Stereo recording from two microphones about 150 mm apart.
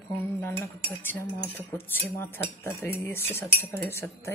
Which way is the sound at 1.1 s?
15° left (ahead or behind).